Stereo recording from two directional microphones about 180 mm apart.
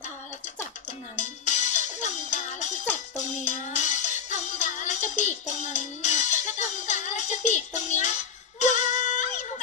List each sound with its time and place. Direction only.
1.1 s music: 40° left (ahead or behind)